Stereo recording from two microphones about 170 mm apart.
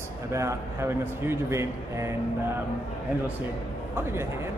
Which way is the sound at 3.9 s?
15° right (ahead or behind).